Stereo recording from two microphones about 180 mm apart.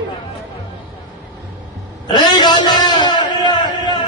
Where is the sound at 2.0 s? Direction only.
25° left (ahead or behind).